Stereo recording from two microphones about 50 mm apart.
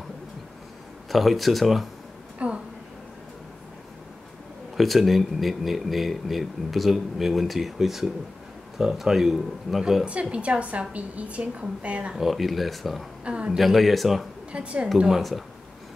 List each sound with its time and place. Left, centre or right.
1.1 s speech: centre
2.3 s a sound: right
4.7 s speech: centre
10.3 s a woman's voice: right
12.2 s speech: centre
13.2 s a woman's voice: right
13.6 s speech: centre
14.5 s a woman's voice: right
15.0 s speech: centre